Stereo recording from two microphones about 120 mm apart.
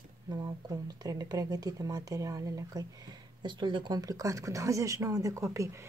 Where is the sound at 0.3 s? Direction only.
30° right (ahead or behind).